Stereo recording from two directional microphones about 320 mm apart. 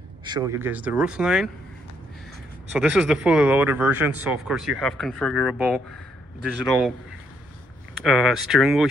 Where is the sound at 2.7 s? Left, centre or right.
Centre.